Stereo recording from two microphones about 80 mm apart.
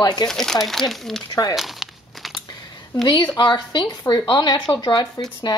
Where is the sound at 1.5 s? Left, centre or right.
Centre.